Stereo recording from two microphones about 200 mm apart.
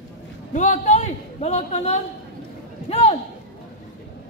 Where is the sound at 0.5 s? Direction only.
40° left (ahead or behind).